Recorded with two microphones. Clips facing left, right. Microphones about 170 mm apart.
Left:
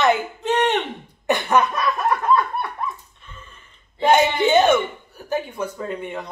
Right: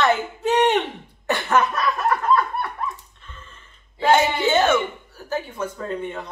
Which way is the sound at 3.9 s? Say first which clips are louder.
Left 1 dB; 15° left (ahead or behind).